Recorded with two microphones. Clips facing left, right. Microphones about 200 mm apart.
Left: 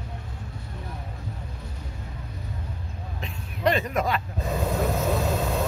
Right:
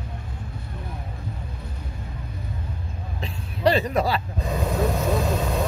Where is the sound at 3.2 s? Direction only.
35° right (ahead or behind).